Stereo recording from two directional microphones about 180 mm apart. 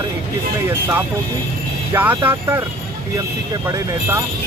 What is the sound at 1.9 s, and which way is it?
Speech, 10° right (ahead or behind).